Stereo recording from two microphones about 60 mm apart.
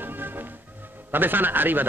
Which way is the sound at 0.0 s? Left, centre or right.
Right.